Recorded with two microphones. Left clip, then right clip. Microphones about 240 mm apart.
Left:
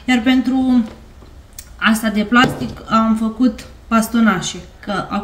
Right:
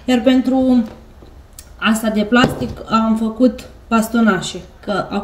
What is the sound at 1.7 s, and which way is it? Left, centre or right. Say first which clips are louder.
Speech: left 1 dB; centre.